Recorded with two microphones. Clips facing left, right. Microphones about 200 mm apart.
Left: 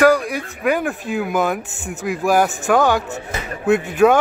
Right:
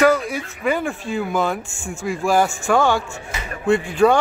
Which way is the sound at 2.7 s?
10° left (ahead or behind).